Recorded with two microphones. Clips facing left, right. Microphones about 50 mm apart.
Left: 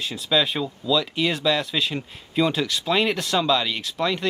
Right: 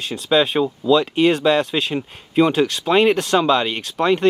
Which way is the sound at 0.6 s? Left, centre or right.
Right.